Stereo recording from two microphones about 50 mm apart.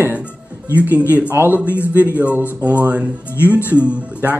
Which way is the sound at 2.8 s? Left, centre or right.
Right.